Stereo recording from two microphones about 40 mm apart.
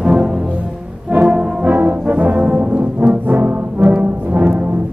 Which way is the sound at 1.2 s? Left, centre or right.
Right.